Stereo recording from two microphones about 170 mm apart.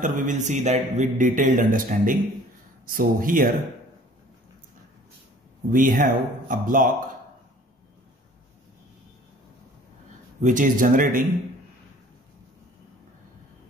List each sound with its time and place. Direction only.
0.0 s speech: 50° right (ahead or behind)
5.7 s speech: 55° right (ahead or behind)
10.4 s speech: 50° right (ahead or behind)